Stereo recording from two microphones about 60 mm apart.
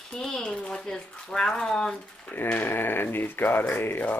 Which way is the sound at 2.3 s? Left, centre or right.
Left.